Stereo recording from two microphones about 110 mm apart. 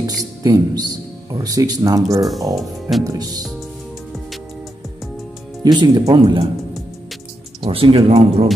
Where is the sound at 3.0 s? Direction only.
35° right (ahead or behind).